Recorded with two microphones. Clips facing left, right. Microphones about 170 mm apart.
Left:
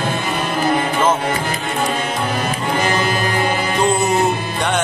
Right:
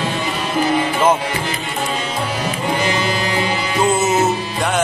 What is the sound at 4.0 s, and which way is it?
Music, 5° right (ahead or behind).